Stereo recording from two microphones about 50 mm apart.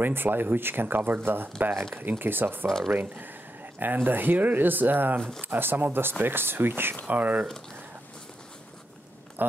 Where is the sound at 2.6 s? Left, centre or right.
Centre.